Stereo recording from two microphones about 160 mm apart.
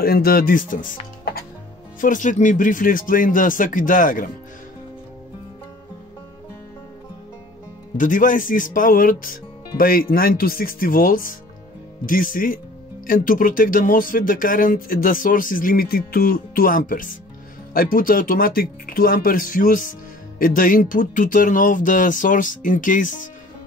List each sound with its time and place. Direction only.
0.0 s speech: 70° left (ahead or behind)
2.0 s speech: 55° left (ahead or behind)
8.0 s speech: 55° left (ahead or behind)